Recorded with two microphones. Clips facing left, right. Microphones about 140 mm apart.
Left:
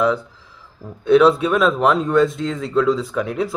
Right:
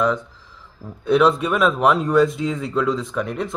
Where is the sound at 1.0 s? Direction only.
Centre (ahead or behind).